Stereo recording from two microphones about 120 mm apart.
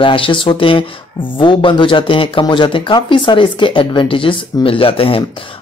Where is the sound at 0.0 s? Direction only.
45° left (ahead or behind).